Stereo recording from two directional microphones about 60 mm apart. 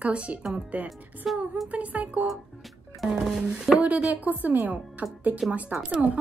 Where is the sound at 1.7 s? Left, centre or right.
Right.